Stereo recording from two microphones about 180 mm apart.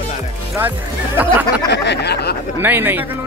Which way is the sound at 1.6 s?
70° left (ahead or behind).